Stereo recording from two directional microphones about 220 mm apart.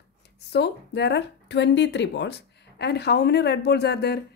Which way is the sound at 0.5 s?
50° left (ahead or behind).